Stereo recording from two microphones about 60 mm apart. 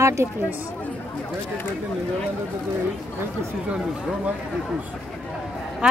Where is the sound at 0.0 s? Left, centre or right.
Right.